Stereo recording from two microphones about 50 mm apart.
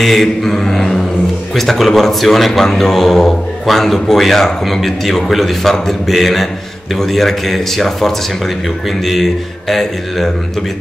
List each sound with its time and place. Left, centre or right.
0.0 s mantra: centre
1.5 s a man's voice: centre